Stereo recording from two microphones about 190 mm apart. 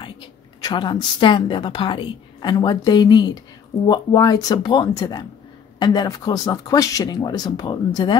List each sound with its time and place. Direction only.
0.0 s a woman's voice: 25° left (ahead or behind)